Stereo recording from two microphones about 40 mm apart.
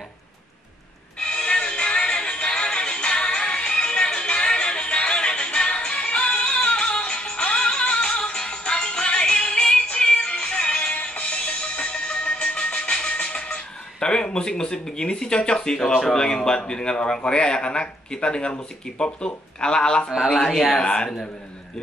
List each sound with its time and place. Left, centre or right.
1.2 s music: left
13.5 s a man's voice: left
20.2 s speech: centre